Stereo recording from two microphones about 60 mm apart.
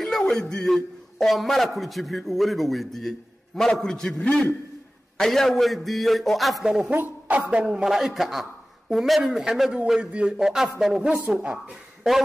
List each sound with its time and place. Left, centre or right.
0.3 s a man's voice: centre
4.2 s a man's voice: left
5.1 s a man's voice: centre
6.6 s a man's voice: centre
6.9 s a man's voice: right
7.8 s a man's voice: centre